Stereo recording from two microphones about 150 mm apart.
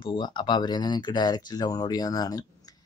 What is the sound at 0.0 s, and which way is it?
Speech, 30° left (ahead or behind).